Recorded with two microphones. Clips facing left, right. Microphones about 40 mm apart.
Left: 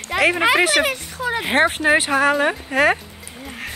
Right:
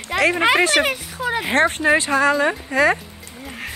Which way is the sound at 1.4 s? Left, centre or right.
Centre.